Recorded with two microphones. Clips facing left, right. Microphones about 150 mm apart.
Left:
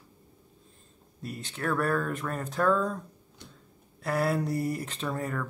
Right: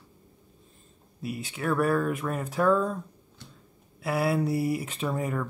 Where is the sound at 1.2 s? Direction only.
5° right (ahead or behind).